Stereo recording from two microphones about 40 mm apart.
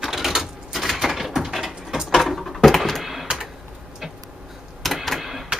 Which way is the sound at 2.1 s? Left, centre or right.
Centre.